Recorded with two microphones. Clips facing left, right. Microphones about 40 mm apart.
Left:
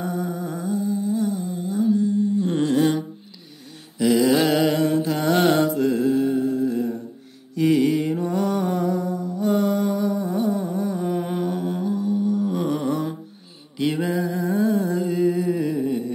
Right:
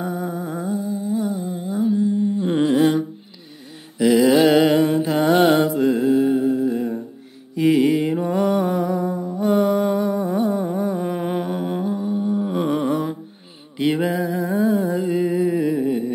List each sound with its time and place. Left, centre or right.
0.0 s humming: centre
4.0 s mantra: centre
8.6 s humming: centre; by 13.0 s right
14.0 s music: centre